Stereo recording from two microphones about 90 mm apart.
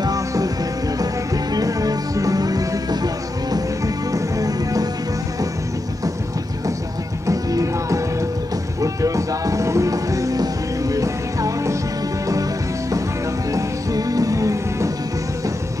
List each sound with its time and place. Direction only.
0.0 s music: 40° right (ahead or behind)
7.2 s music: 35° right (ahead or behind)
13.5 s music: 40° right (ahead or behind)